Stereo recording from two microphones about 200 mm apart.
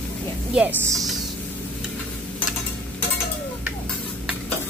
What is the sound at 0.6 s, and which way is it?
Speech, 5° right (ahead or behind).